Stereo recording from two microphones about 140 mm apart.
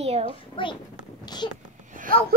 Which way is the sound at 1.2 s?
30° left (ahead or behind).